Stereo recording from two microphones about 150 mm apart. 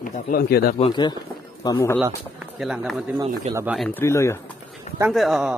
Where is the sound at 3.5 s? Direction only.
40° right (ahead or behind).